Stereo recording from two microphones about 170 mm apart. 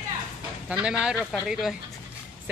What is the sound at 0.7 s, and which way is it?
Speech, 5° right (ahead or behind).